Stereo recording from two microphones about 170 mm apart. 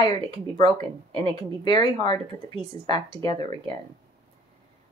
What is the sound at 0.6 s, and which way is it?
Speech, 25° left (ahead or behind).